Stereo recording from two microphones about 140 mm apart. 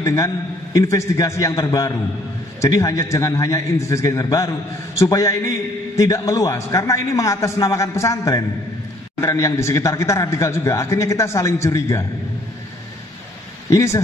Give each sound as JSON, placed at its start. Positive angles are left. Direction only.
{"t": 0.0, "sound": "a man's voice", "side_deg": 25}
{"t": 13.7, "sound": "a man's voice", "side_deg": 20}